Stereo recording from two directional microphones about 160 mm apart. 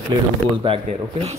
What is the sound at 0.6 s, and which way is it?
Speech, 35° right (ahead or behind).